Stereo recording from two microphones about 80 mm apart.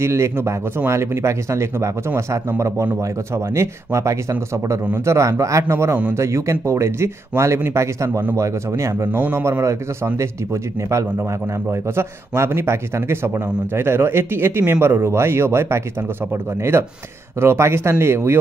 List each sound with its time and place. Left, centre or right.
0.0 s a man's voice: right
9.0 s a man's voice: right